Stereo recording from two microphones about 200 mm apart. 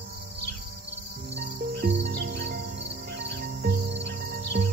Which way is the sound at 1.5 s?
45° right (ahead or behind).